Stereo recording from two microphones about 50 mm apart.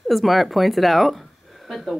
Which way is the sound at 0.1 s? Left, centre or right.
Centre.